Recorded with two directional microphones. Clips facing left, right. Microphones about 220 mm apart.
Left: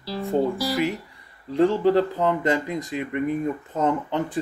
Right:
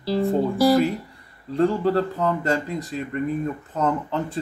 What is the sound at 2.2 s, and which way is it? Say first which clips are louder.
Speech: left 1 dB; 20° left (ahead or behind).